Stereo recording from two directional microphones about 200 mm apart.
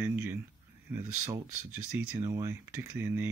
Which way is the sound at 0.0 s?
10° right (ahead or behind).